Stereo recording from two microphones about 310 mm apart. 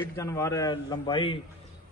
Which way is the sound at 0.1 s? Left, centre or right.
Centre.